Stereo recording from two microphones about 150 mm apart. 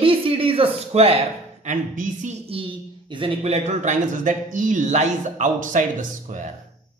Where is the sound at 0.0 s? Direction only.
35° right (ahead or behind); by 6.5 s 55° right (ahead or behind).